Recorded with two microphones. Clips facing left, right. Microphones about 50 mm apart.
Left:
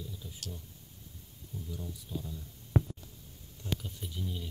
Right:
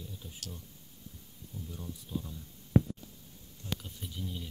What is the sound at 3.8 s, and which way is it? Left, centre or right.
Speech, centre.